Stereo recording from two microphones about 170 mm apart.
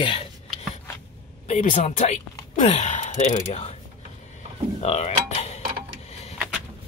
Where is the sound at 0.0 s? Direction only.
30° left (ahead or behind).